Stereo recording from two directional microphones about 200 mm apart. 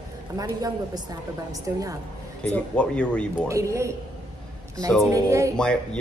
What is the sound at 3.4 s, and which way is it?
Speech, 15° right (ahead or behind).